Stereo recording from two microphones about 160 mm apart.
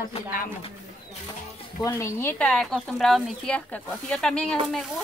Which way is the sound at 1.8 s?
20° left (ahead or behind).